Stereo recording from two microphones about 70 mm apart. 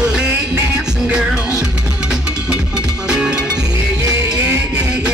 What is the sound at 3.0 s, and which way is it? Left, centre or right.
Music, centre.